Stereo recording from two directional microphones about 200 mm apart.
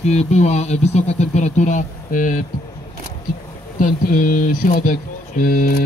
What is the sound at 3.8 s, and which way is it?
Speech, 45° left (ahead or behind).